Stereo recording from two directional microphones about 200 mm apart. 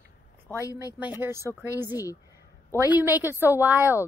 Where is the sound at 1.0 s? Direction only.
10° right (ahead or behind).